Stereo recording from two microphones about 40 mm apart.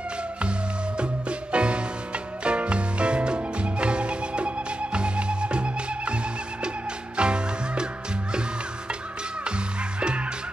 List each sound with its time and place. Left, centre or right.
0.4 s music: right
7.2 s music: right
9.9 s music: right